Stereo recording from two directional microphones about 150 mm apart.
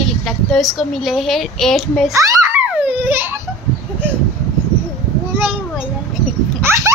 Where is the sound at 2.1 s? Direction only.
20° right (ahead or behind).